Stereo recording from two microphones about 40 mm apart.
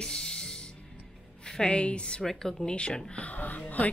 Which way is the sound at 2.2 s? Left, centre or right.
Centre.